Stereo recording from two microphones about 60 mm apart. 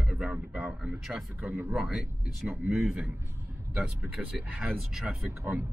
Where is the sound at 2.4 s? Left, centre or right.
Right.